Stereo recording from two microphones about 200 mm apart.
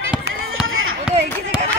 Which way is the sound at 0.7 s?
90° right.